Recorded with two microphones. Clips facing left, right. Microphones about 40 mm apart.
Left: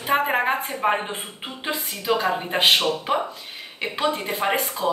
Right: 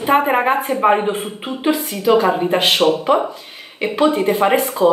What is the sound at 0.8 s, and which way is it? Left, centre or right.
Speech, centre.